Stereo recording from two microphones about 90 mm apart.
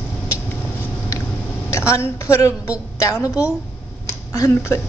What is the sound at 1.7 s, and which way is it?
A woman's voice, 35° left (ahead or behind).